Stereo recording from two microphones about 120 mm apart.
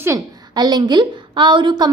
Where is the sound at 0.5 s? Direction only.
35° right (ahead or behind).